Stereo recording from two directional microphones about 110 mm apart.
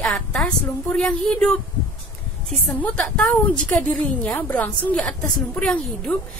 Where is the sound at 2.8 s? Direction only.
10° left (ahead or behind).